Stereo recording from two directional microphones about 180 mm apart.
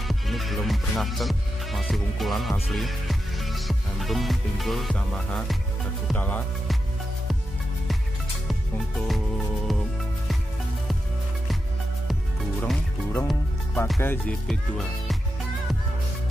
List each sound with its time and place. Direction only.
0.1 s music: centre (ahead or behind)
6.0 s speech: 10° left (ahead or behind)
8.9 s music: centre (ahead or behind)
12.6 s music: 5° left (ahead or behind)
14.5 s music: centre (ahead or behind)